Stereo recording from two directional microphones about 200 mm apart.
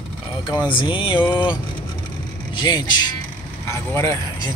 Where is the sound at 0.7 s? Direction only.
25° left (ahead or behind).